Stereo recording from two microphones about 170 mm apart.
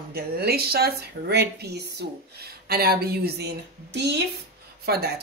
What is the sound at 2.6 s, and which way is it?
Speech, 65° right (ahead or behind).